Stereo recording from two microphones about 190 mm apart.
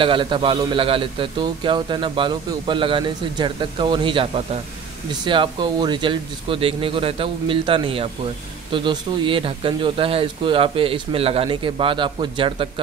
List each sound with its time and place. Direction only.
0.0 s a man's voice: 25° right (ahead or behind)